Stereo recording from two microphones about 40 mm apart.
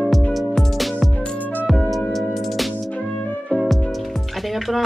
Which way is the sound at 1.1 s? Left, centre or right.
Left.